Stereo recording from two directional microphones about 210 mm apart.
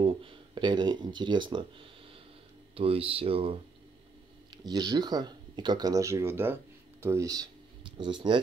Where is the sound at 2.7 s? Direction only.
25° right (ahead or behind).